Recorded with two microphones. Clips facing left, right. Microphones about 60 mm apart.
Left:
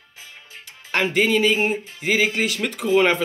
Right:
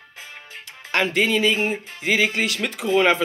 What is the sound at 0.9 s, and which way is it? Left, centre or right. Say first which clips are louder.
Speech: left 1 dB; centre.